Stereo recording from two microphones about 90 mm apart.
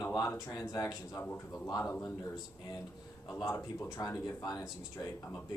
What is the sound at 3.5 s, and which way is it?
Speech, 40° left (ahead or behind).